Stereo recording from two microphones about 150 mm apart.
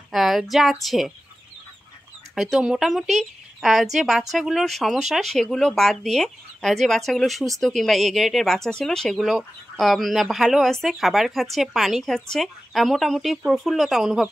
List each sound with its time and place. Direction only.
0.1 s a sound: centre (ahead or behind)
0.8 s speech: centre (ahead or behind)
2.3 s speech: centre (ahead or behind)